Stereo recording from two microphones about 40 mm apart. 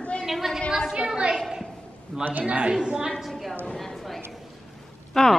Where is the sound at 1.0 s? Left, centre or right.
Right.